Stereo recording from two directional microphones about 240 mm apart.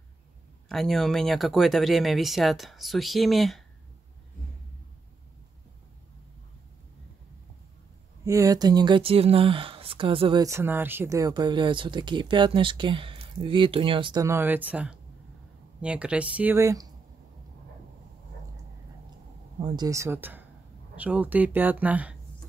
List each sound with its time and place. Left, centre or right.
0.7 s speech: centre
8.3 s speech: centre
19.6 s speech: centre